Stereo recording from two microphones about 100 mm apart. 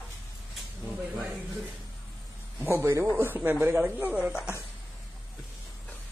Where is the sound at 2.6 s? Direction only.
25° right (ahead or behind).